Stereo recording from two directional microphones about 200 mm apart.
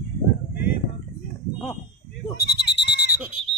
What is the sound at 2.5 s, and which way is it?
Sheep, 60° left (ahead or behind).